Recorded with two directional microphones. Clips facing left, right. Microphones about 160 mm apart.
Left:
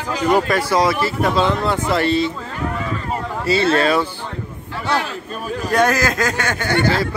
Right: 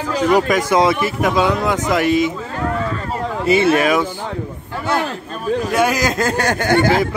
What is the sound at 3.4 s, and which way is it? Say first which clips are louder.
Speech: right 2 dB; 20° right (ahead or behind).